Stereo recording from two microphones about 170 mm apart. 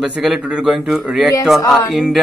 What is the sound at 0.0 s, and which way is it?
Speech, 5° right (ahead or behind).